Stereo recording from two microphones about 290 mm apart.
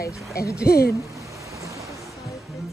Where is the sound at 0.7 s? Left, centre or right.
Left.